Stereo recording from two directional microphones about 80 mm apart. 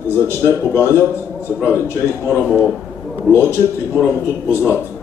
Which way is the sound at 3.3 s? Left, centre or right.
Left.